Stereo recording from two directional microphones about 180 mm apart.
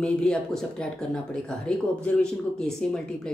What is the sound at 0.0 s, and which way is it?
Speech, 5° left (ahead or behind).